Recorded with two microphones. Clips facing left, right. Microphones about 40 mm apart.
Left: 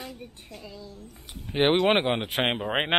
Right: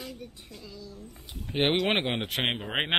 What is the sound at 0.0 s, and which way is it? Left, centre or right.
A woman's voice, left.